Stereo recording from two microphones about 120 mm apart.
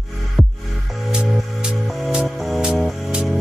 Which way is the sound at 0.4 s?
Centre (ahead or behind).